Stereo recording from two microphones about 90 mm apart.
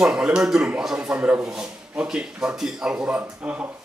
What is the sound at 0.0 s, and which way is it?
A man's voice, 10° right (ahead or behind).